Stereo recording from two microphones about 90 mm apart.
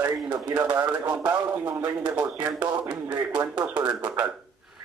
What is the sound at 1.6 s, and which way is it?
Speech, 45° right (ahead or behind).